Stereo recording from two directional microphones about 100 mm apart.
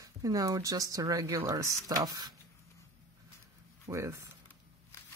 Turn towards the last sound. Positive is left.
turn(degrees=-30)  # may be behind; listen again after turning